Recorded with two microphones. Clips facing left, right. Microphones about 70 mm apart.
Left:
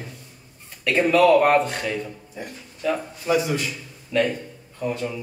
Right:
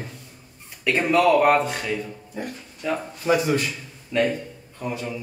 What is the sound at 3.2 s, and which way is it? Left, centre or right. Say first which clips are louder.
Speech: right 1 dB; right.